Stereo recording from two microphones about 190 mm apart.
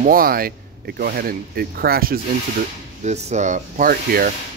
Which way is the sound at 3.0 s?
35° right (ahead or behind).